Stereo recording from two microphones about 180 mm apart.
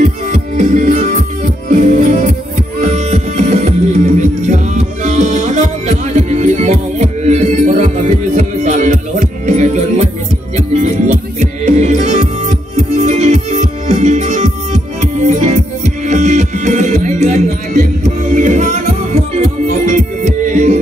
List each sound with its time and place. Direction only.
0.0 s music: 40° right (ahead or behind)